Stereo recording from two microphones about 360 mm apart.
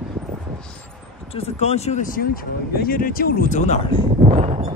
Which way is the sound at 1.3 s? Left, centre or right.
Centre.